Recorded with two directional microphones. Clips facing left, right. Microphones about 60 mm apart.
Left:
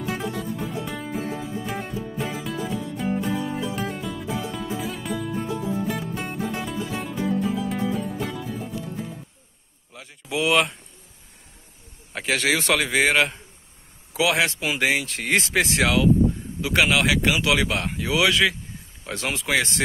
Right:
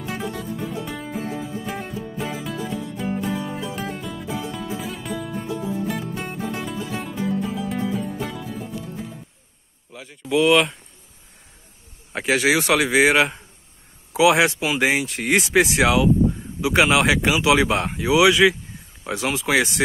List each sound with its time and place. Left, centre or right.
0.0 s music: centre
9.9 s a sound: centre
12.1 s speech: centre